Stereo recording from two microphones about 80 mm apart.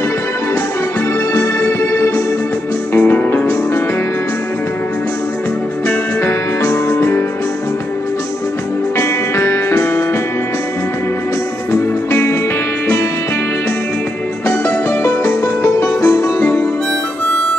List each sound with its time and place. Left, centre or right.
1.3 s music: left
3.0 s music: left
5.9 s music: left
8.9 s music: left
11.7 s music: left
14.5 s music: left